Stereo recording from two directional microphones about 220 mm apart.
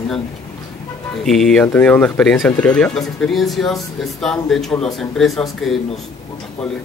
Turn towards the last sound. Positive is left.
turn(degrees=0)  # may be behind; listen again after turning